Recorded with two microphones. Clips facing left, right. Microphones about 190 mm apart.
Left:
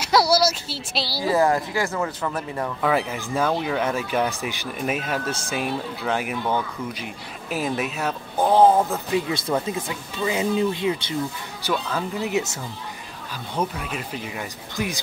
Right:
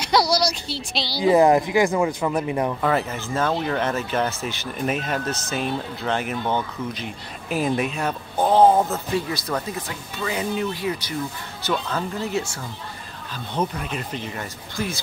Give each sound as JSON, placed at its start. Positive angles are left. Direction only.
{"t": 0.0, "sound": "speech", "side_deg": 5}
{"t": 1.2, "sound": "speech", "side_deg": -20}
{"t": 2.8, "sound": "speech", "side_deg": 10}
{"t": 8.5, "sound": "speech", "side_deg": -5}
{"t": 9.1, "sound": "speech", "side_deg": 20}
{"t": 11.6, "sound": "speech", "side_deg": 10}
{"t": 13.6, "sound": "speech", "side_deg": 5}